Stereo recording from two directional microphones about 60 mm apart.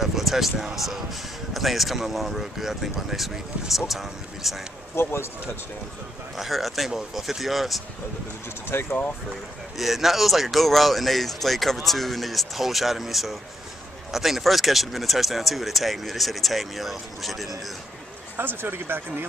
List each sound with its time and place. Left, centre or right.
0.0 s speech: centre
4.9 s speech: left
6.3 s speech: centre
8.7 s speech: left
9.8 s speech: centre
18.3 s speech: right